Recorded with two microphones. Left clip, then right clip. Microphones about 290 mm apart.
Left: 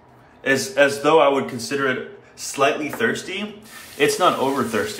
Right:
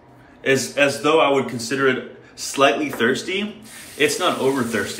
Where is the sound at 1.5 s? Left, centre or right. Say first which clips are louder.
Right 2 dB; centre.